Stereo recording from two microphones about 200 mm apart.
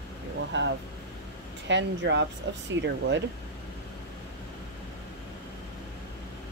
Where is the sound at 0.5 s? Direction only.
60° right (ahead or behind).